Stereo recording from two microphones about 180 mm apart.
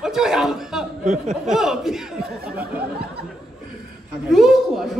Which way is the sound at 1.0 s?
40° right (ahead or behind).